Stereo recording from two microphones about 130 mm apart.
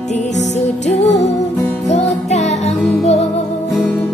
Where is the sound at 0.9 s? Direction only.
55° left (ahead or behind).